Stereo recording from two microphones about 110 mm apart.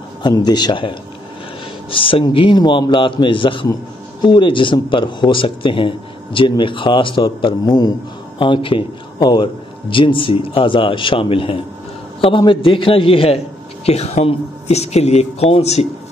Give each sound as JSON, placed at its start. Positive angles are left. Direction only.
{"t": 0.2, "sound": "a man's voice", "side_deg": 40}
{"t": 13.8, "sound": "speech", "side_deg": 70}